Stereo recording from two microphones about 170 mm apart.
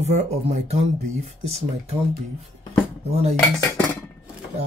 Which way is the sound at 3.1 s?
40° right (ahead or behind).